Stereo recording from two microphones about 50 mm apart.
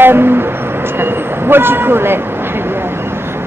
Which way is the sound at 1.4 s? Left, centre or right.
Right.